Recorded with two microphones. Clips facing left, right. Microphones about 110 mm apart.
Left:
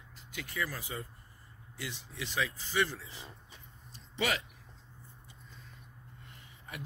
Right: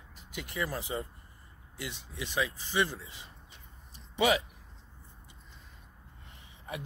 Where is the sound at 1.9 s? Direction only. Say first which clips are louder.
Right 3 dB; 10° right (ahead or behind).